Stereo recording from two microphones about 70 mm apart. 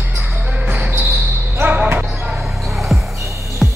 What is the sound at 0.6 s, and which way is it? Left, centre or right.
Basketball bounce, right.